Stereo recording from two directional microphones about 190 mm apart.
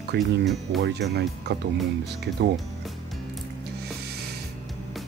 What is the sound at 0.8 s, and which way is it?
Speech, 60° right (ahead or behind).